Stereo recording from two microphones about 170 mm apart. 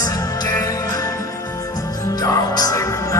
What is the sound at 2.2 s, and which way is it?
Music, 20° left (ahead or behind).